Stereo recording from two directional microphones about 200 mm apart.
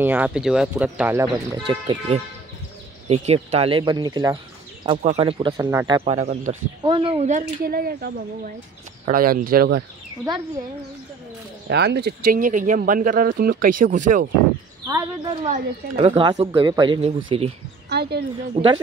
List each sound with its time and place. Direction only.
0.0 s speech: 10° right (ahead or behind)
1.7 s speech: 30° right (ahead or behind)
4.8 s speech: 30° right (ahead or behind)
5.7 s speech: 15° right (ahead or behind)
6.0 s speech: 40° right (ahead or behind)
6.8 s speech: 25° right (ahead or behind); by 9.8 s 50° right (ahead or behind)
11.6 s speech: 55° right (ahead or behind); by 14.3 s 40° right (ahead or behind)
15.4 s speech: 35° right (ahead or behind)
16.1 s speech: 20° right (ahead or behind)
17.8 s a sound: 55° right (ahead or behind)
18.5 s speech: 25° right (ahead or behind)